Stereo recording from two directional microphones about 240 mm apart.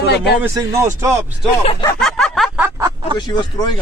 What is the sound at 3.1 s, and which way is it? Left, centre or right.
Speech, centre.